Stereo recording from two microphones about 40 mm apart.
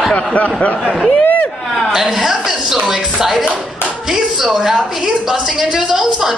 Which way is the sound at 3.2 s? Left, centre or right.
Centre.